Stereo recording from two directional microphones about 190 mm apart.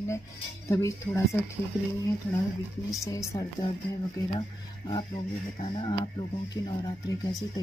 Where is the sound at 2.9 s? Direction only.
15° left (ahead or behind).